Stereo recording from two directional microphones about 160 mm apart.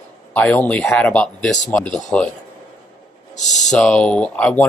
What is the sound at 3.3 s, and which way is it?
Speech, 50° left (ahead or behind).